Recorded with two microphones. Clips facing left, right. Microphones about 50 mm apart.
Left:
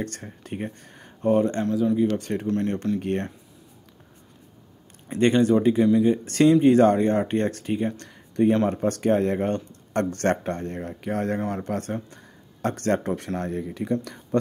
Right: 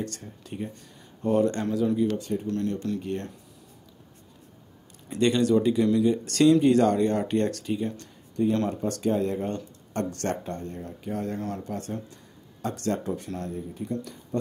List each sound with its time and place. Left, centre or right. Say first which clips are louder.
0.0 s speech: left 2 dB; left
1.3 s speech: left 2 dB; left
1.6 s speech: left 3 dB; centre
2.1 s speech: left 2 dB; left
2.4 s speech: left 4 dB; left
5.0 s speech: left 3 dB; left
11.3 s speech: left 5 dB; left
11.6 s speech: left 5 dB; left
13.5 s speech: left 6 dB; left
14.0 s speech: left 6 dB; left